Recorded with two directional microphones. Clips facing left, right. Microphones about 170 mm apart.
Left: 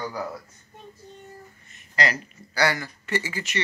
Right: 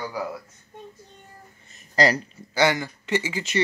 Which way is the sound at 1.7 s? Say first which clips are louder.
Right 6 dB; 35° right (ahead or behind).